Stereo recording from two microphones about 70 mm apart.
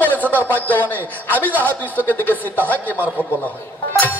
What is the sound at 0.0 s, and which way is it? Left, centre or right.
A man's voice, left.